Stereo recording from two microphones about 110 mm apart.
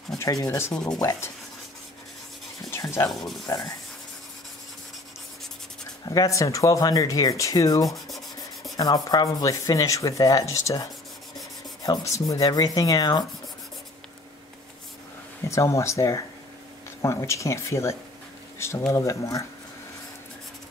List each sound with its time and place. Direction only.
0.2 s rub: 35° left (ahead or behind)
2.7 s rub: 25° left (ahead or behind)
3.1 s speech: centre (ahead or behind)
3.4 s rub: 30° left (ahead or behind)
6.0 s rub: 30° left (ahead or behind)
15.4 s speech: 25° left (ahead or behind)